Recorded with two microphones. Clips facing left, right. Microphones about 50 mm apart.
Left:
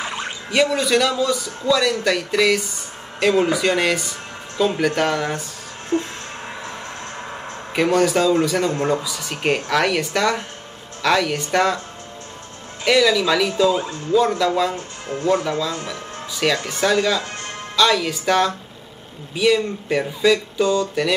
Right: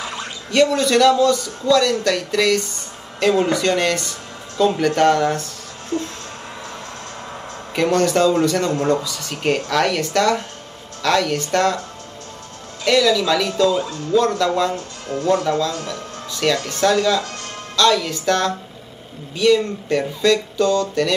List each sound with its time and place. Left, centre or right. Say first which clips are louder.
0.0 s a sound: left 2 dB; left
0.5 s a man's voice: right 2 dB; centre
5.9 s speech: left 2 dB; left
6.6 s music: left 1 dB; left
7.7 s a man's voice: even; centre
12.8 s a man's voice: even; centre
13.7 s speech: right 1 dB; left
14.4 s a man's voice: right 1 dB; centre
14.8 s a man's voice: right 1 dB; left; by 21.1 s centre